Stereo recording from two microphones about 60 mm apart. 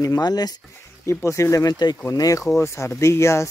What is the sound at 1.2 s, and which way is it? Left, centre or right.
Speech, left.